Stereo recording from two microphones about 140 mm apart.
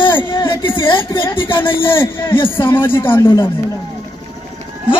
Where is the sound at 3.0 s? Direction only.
15° left (ahead or behind).